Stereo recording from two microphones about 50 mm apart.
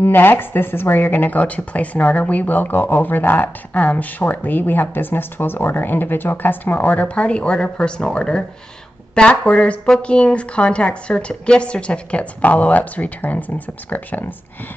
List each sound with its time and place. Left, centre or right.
0.0 s a woman's voice: left